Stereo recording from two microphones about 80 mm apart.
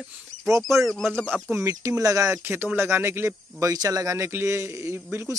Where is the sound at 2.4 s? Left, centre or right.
Right.